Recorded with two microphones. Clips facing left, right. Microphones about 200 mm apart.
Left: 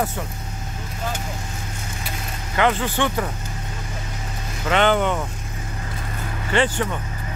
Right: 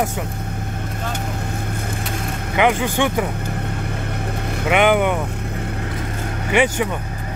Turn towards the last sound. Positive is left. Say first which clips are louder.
# right 3 dB
turn(degrees=-10)  # may be behind; listen again after turning